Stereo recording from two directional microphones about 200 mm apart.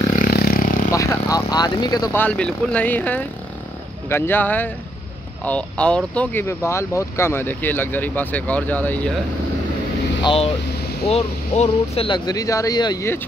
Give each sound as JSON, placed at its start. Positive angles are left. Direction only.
{"t": 0.2, "sound": "vehicle", "side_deg": 50}
{"t": 0.9, "sound": "speech", "side_deg": 15}
{"t": 10.2, "sound": "speech", "side_deg": 30}